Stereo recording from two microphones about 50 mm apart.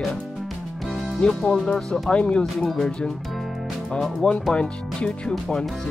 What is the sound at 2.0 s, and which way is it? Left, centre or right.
Speech, left.